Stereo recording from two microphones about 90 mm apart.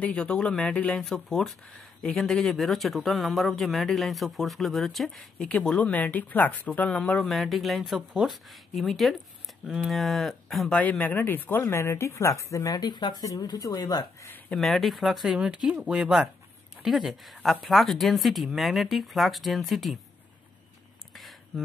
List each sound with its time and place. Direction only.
0.0 s speech: 15° left (ahead or behind)
1.0 s speech: centre (ahead or behind)
7.2 s speech: centre (ahead or behind)
10.7 s speech: 20° left (ahead or behind); by 14.0 s 40° left (ahead or behind)
14.5 s speech: centre (ahead or behind)
21.1 s a sound: centre (ahead or behind)